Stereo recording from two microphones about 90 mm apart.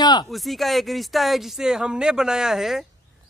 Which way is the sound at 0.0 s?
50° left (ahead or behind).